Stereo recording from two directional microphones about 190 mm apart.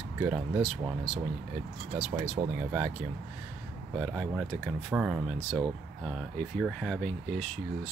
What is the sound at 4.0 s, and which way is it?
Speech, centre (ahead or behind).